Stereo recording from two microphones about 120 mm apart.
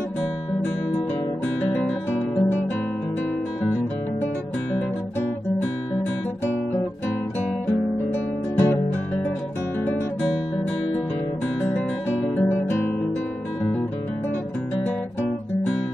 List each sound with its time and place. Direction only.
1.8 s guitar: 5° left (ahead or behind)
7.6 s music: 20° left (ahead or behind)
12.4 s guitar: 15° left (ahead or behind)